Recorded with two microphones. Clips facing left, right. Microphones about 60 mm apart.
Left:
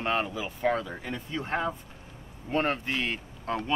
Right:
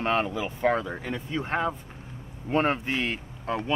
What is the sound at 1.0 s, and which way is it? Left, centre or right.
Speech, centre.